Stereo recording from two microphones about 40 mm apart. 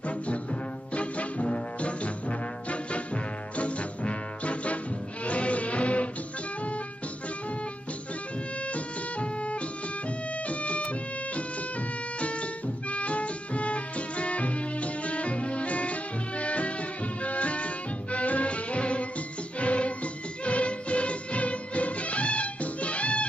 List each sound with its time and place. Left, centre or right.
0.9 s trombone: left
3.5 s music: left
8.6 s music: left